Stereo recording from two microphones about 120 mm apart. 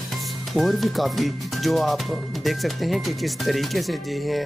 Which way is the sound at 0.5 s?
Centre (ahead or behind).